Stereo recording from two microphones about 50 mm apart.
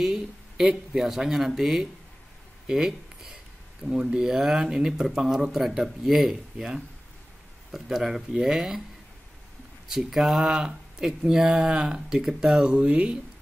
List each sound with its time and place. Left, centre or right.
0.0 s speech: centre
9.8 s speech: centre
12.6 s speech: right